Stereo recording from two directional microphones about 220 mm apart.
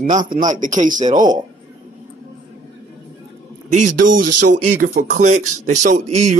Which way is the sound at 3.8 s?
90° right.